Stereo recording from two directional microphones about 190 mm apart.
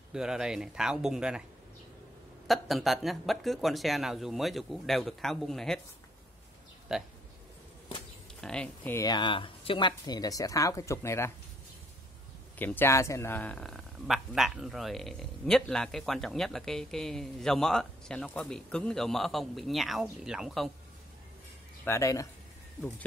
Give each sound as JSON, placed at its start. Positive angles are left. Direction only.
{"t": 0.1, "sound": "speech", "side_deg": -5}
{"t": 2.4, "sound": "speech", "side_deg": 0}
{"t": 6.9, "sound": "speech", "side_deg": 0}
{"t": 8.4, "sound": "speech", "side_deg": 5}
{"t": 9.0, "sound": "speech", "side_deg": 25}
{"t": 12.5, "sound": "speech", "side_deg": 10}
{"t": 21.8, "sound": "speech", "side_deg": 15}